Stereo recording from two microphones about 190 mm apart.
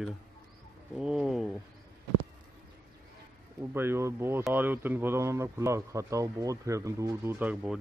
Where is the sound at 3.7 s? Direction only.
10° right (ahead or behind).